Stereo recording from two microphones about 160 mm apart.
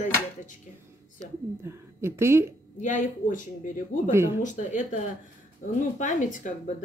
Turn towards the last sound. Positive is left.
turn(degrees=50)  # may be behind; listen again after turning